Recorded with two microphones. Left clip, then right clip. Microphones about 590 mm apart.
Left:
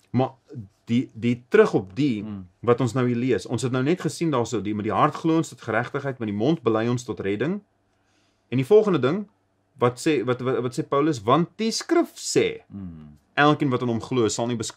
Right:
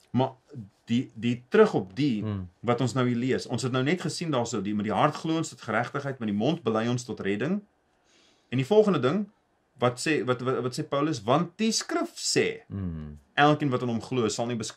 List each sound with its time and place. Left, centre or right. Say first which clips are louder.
0.8 s speech: left 4 dB; left